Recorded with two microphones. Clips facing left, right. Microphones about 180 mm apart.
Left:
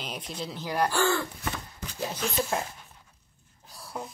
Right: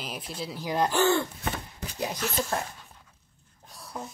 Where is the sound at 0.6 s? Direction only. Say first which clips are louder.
Right 2 dB; 20° right (ahead or behind).